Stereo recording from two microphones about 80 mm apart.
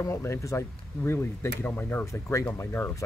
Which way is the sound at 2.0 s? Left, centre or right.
Left.